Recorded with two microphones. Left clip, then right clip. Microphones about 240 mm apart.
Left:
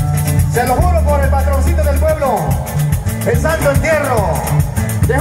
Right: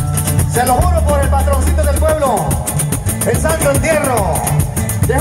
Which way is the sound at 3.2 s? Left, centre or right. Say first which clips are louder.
Even; right.